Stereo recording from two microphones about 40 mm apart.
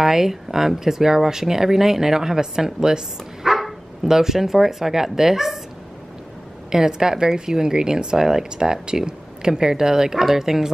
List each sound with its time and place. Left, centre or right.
0.0 s speech: centre
3.4 s dog: centre
4.1 s speech: centre
6.7 s speech: centre